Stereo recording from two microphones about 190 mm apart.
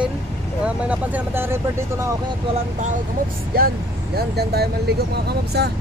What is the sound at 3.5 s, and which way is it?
Speech, 50° right (ahead or behind).